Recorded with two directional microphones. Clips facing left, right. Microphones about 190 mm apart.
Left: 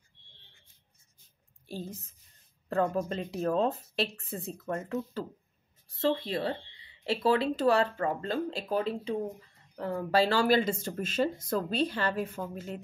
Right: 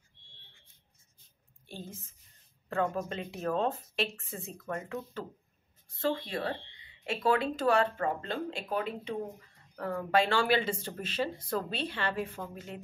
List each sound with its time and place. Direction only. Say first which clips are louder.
1.7 s speech: left 5 dB; 40° left (ahead or behind)